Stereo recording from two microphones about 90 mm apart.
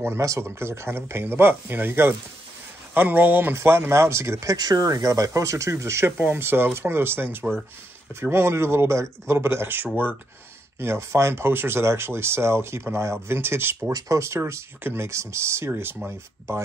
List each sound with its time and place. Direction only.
0.0 s speech: 30° right (ahead or behind)